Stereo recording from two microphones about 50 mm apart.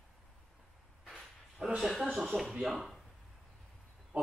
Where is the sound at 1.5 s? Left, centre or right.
Centre.